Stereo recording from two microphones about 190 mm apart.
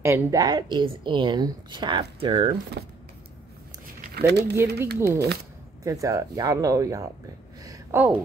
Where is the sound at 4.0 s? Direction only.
55° right (ahead or behind).